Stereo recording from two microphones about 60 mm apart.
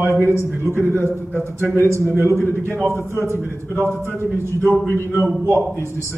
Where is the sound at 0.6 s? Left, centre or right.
Left.